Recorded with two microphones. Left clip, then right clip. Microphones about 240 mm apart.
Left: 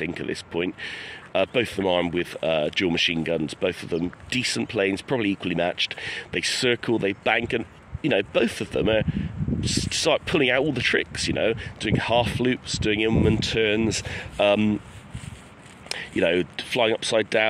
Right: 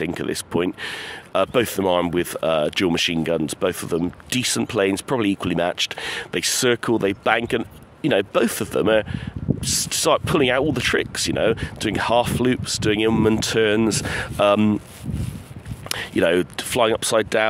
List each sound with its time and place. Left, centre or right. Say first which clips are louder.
0.0 s speech: right 4 dB; right
15.9 s speech: right 4 dB; right